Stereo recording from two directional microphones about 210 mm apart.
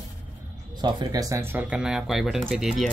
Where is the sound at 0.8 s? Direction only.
15° right (ahead or behind).